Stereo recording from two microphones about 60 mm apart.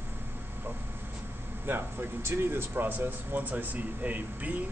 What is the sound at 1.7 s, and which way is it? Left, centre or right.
Speech, right.